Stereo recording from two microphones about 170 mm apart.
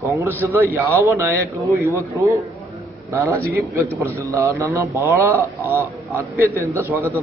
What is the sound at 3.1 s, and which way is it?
A man's voice, 15° right (ahead or behind).